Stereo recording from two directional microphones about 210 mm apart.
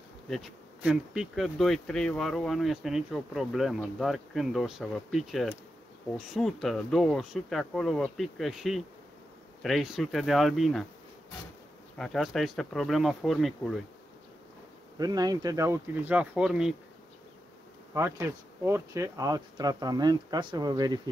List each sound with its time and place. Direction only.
0.3 s speech: centre (ahead or behind)
12.0 s speech: centre (ahead or behind)
15.0 s speech: 20° right (ahead or behind)
17.9 s speech: 15° right (ahead or behind)